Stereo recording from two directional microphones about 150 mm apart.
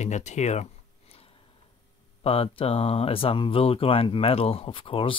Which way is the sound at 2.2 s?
40° left (ahead or behind).